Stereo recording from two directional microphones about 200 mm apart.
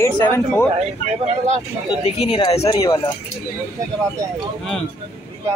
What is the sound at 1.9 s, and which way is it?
Speech, 25° left (ahead or behind).